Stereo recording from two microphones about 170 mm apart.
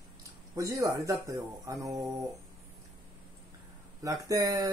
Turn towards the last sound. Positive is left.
turn(degrees=-20)  # may be behind; listen again after turning